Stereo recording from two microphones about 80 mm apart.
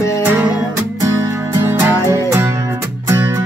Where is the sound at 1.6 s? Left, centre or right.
Right.